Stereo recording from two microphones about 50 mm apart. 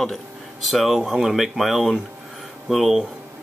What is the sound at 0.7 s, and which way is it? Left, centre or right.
Speech, centre.